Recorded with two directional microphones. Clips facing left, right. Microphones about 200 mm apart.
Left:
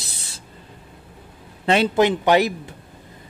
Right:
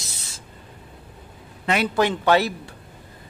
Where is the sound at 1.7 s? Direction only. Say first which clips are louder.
Left 4 dB; 25° left (ahead or behind).